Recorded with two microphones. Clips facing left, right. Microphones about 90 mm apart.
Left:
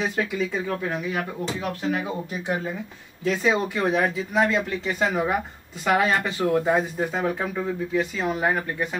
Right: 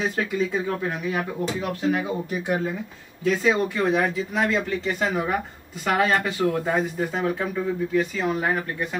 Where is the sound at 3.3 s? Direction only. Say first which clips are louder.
Right 1 dB; 5° left (ahead or behind).